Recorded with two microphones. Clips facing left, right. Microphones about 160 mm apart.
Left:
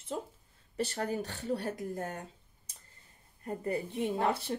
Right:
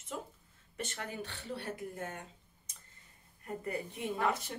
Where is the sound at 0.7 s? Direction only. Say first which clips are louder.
Left 8 dB; 35° left (ahead or behind).